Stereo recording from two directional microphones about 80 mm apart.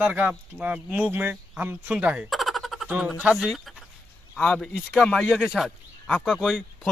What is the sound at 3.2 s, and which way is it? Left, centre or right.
Speech, centre.